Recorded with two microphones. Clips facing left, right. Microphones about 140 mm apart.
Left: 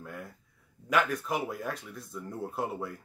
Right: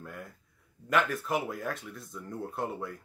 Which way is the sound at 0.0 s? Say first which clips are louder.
Left 1 dB; centre (ahead or behind).